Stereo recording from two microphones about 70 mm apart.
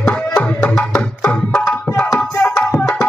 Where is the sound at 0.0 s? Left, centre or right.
Centre.